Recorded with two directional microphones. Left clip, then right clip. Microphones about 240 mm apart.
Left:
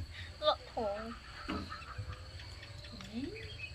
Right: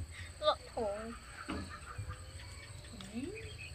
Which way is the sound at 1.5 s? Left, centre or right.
Left.